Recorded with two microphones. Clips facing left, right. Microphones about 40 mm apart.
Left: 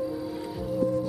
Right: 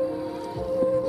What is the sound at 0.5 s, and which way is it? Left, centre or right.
Music, centre.